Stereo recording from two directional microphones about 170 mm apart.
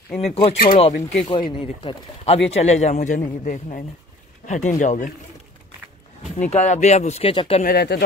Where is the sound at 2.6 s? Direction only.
40° left (ahead or behind).